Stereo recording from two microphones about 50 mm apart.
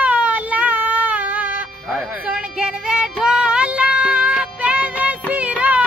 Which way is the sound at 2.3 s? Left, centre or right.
Centre.